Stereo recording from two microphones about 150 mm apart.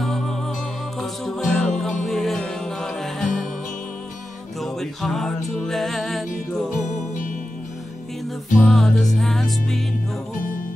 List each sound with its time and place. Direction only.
0.0 s music: centre (ahead or behind)
4.6 s music: centre (ahead or behind)
8.6 s music: centre (ahead or behind)